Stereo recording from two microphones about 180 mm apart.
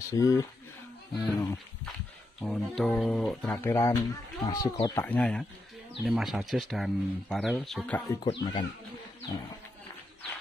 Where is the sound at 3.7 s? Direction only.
15° left (ahead or behind).